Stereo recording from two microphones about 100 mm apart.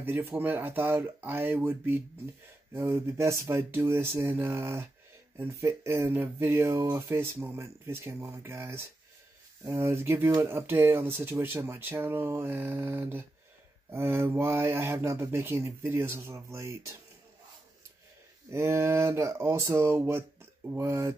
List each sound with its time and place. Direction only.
0.0 s speech: 20° right (ahead or behind)
18.5 s speech: 30° right (ahead or behind)